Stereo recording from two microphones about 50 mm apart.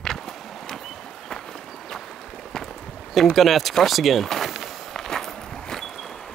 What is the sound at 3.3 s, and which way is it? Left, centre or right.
Walk, centre.